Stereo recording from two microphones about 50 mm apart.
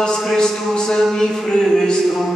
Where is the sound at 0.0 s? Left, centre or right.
Centre.